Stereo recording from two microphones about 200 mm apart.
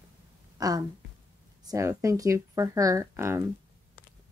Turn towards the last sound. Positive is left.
turn(degrees=-15)  # may be behind; listen again after turning